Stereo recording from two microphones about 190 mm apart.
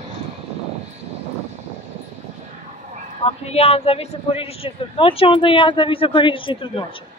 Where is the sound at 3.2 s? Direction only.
30° left (ahead or behind).